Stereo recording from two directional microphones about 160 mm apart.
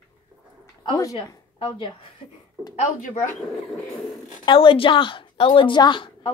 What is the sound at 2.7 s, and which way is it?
Speech, 50° left (ahead or behind).